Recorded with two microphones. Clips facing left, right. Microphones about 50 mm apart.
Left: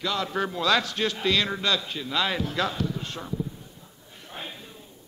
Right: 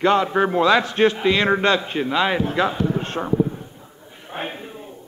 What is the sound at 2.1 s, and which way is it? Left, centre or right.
Speech, right.